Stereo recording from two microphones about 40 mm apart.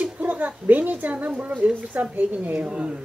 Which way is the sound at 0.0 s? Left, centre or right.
Right.